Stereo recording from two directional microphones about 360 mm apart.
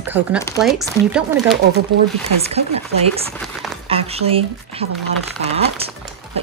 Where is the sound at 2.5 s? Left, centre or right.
Centre.